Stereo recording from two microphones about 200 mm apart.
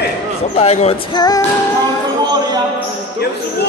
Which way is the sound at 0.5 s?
30° left (ahead or behind).